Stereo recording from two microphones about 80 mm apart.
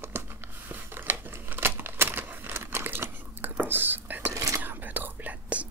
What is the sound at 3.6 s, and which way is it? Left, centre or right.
Whispering, right.